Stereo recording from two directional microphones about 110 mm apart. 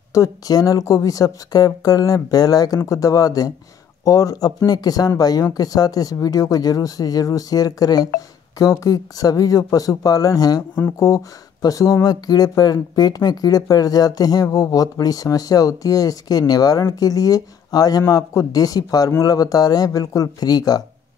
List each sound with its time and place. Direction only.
0.1 s speech: 30° left (ahead or behind)